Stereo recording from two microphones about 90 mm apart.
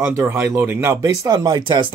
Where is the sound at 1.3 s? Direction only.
55° right (ahead or behind).